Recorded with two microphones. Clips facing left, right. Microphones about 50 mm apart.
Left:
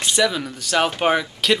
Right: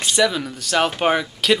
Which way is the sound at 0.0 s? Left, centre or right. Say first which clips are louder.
Right 1 dB; centre.